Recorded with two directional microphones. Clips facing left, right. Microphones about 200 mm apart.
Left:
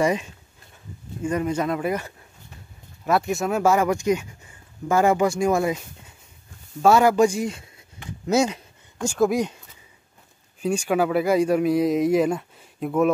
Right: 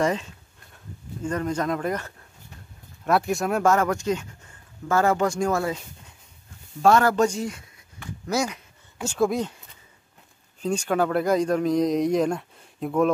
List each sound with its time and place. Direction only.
0.0 s speech: 10° left (ahead or behind)
6.8 s speech: 10° left (ahead or behind)
7.4 s speech: 25° left (ahead or behind)
9.0 s speech: 10° left (ahead or behind)
10.6 s speech: 10° left (ahead or behind)